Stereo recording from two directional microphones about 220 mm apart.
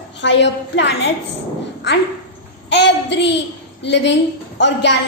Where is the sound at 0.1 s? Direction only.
55° left (ahead or behind).